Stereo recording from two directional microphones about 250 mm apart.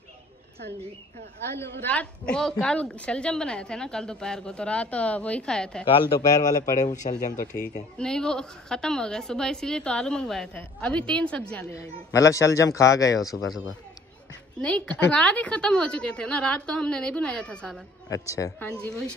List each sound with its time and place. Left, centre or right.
1.9 s a woman's voice: centre
5.9 s a man's voice: centre
7.2 s speech: left
8.0 s a woman's voice: centre
14.6 s a woman's voice: centre